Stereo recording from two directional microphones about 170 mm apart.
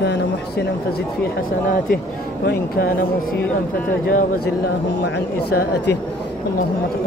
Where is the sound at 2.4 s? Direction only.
65° left (ahead or behind).